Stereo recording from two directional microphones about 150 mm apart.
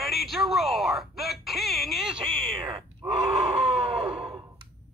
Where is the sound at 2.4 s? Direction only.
35° right (ahead or behind).